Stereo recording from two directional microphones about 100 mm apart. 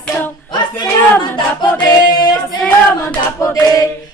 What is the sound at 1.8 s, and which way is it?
Singing, 40° left (ahead or behind).